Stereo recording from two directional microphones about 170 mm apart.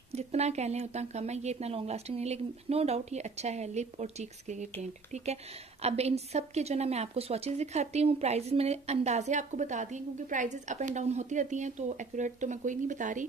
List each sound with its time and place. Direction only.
0.1 s speech: 40° right (ahead or behind)